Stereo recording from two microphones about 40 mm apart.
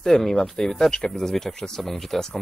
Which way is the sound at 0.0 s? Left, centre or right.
Centre.